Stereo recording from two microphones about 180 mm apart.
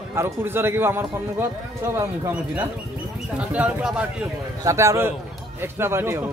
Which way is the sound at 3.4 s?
5° right (ahead or behind).